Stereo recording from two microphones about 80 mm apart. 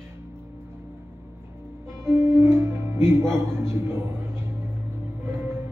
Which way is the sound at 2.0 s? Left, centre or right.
Right.